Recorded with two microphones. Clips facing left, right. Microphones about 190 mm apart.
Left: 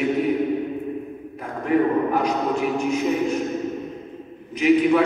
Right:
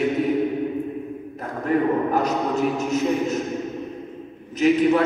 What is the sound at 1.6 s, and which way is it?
A man's voice, 40° right (ahead or behind).